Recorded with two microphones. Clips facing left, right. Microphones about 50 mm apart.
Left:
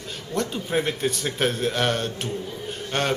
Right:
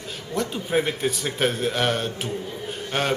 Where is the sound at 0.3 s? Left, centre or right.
Centre.